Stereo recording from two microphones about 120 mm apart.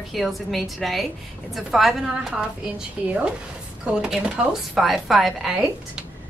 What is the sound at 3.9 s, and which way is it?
A woman's voice, 5° right (ahead or behind).